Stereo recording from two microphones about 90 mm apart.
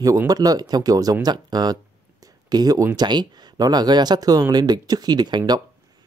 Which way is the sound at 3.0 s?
50° right (ahead or behind).